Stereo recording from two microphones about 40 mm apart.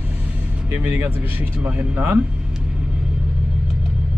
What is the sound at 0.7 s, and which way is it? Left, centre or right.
Speech, right.